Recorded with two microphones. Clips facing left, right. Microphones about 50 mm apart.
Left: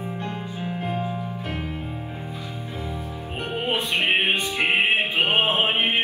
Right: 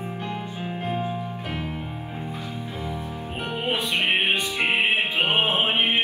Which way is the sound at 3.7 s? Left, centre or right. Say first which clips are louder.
Left 1 dB; left.